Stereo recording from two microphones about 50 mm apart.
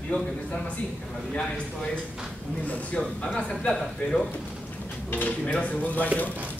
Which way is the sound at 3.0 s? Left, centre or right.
Centre.